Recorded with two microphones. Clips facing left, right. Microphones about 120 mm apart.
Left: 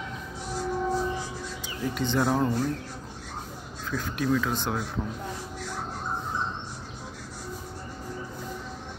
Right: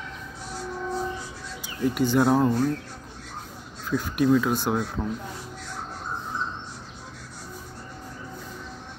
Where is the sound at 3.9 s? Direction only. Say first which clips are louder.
Right 6 dB; 15° right (ahead or behind).